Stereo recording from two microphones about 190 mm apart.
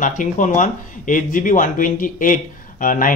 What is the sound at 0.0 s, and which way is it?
Speech, 40° left (ahead or behind).